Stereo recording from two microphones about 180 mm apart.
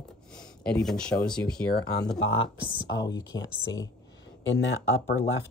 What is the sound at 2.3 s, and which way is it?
Speech, 30° left (ahead or behind).